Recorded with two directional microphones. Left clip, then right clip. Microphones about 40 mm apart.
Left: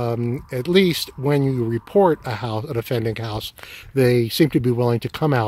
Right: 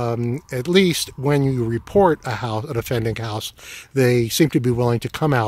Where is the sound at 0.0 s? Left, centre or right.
Right.